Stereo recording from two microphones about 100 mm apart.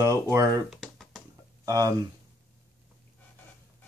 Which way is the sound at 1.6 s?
35° right (ahead or behind).